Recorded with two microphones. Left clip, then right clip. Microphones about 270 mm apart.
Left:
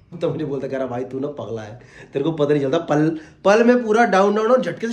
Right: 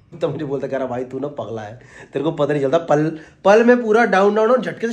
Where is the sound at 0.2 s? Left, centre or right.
Centre.